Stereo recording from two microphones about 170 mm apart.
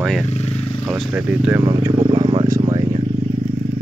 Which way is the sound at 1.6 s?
25° right (ahead or behind).